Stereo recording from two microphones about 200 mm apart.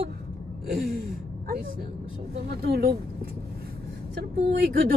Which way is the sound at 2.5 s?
50° right (ahead or behind).